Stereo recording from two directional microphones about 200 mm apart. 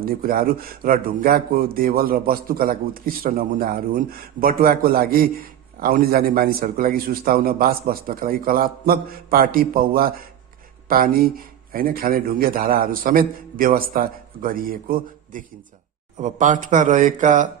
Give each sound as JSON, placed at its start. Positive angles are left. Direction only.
{"t": 0.0, "sound": "speech", "side_deg": -45}